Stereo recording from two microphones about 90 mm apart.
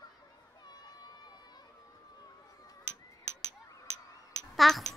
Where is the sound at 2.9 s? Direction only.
30° right (ahead or behind).